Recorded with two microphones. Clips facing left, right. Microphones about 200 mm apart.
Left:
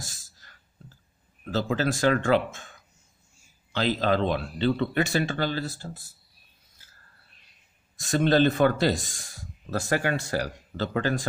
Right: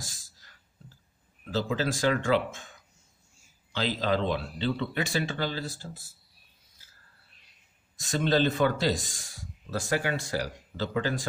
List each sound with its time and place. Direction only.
0.4 s a sound: 55° left (ahead or behind)
1.4 s speech: 55° left (ahead or behind)
4.0 s speech: 55° left (ahead or behind)
8.0 s speech: 55° left (ahead or behind)